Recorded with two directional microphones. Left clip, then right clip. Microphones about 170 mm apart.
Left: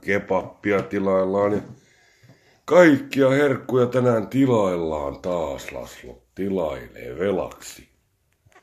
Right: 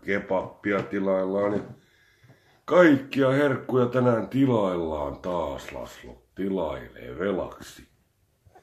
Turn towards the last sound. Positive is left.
turn(degrees=45)  # may be behind; listen again after turning